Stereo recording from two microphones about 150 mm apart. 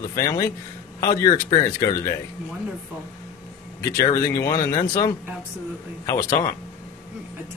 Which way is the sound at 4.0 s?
20° left (ahead or behind).